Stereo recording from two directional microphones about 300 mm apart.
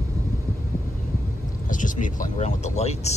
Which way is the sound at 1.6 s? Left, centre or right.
Left.